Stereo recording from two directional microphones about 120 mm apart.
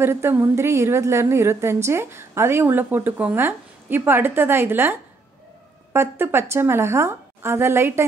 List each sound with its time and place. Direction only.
0.0 s a woman's voice: 20° right (ahead or behind)
5.9 s a woman's voice: 20° right (ahead or behind)